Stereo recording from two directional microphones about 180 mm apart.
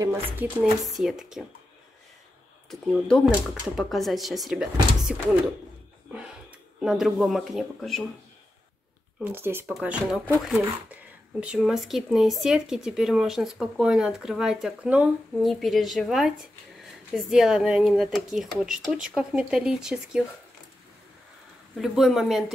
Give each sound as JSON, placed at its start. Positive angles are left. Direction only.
{"t": 0.0, "sound": "speech", "side_deg": -15}
{"t": 0.6, "sound": "speech", "side_deg": 0}
{"t": 2.7, "sound": "speech", "side_deg": 5}
{"t": 6.8, "sound": "speech", "side_deg": -5}
{"t": 9.2, "sound": "speech", "side_deg": -10}
{"t": 21.7, "sound": "speech", "side_deg": 0}